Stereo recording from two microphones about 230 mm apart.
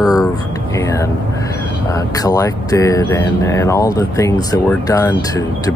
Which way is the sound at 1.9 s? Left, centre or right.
Centre.